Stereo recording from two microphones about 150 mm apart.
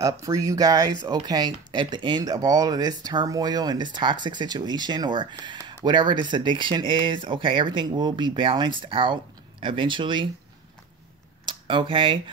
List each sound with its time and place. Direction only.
0.0 s speech: 20° right (ahead or behind)
11.4 s speech: 35° right (ahead or behind)